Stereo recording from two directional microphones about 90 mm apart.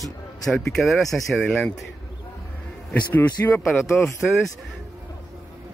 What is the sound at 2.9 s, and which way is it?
Speech, 20° left (ahead or behind).